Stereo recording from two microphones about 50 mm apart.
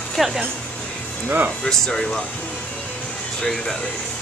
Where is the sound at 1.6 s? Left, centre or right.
Centre.